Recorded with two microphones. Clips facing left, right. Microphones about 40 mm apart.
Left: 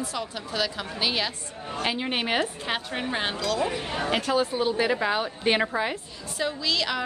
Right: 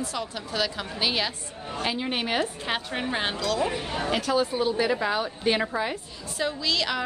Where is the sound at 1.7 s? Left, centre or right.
Left.